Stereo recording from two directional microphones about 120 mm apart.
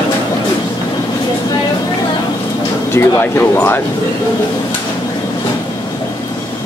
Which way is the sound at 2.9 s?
20° left (ahead or behind).